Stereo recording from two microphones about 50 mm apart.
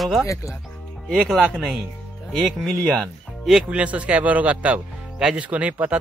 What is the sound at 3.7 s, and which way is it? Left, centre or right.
Speech, right.